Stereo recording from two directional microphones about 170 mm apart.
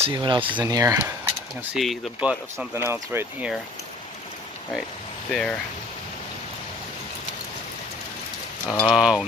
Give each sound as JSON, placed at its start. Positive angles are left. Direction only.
{"t": 0.0, "sound": "speech", "side_deg": -30}
{"t": 1.6, "sound": "speech", "side_deg": -5}
{"t": 5.3, "sound": "speech", "side_deg": 5}
{"t": 8.6, "sound": "speech", "side_deg": 0}